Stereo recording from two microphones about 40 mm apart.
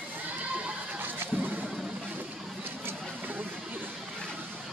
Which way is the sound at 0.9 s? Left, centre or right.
Right.